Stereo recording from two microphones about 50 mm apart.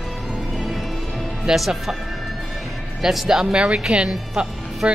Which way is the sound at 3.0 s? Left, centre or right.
Centre.